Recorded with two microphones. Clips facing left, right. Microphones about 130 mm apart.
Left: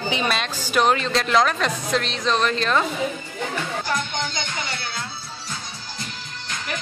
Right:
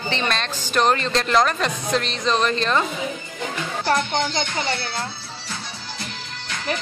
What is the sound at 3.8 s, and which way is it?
Speech, 55° right (ahead or behind).